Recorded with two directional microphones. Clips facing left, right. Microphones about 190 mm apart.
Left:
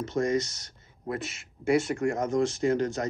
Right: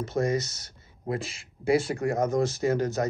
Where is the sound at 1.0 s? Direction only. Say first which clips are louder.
Right 2 dB; 30° right (ahead or behind).